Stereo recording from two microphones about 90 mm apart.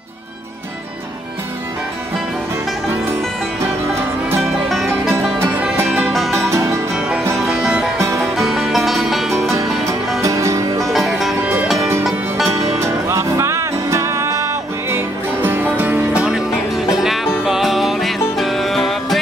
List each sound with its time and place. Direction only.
6.3 s music: 30° right (ahead or behind)
7.0 s music: 10° right (ahead or behind)
10.2 s music: 35° right (ahead or behind)
10.9 s music: 5° right (ahead or behind)
12.4 s music: 35° right (ahead or behind); by 16.0 s 20° right (ahead or behind)
16.2 s music: 5° right (ahead or behind)